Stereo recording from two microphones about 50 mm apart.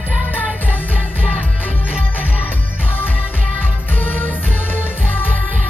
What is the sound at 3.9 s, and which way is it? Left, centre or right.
Music, left.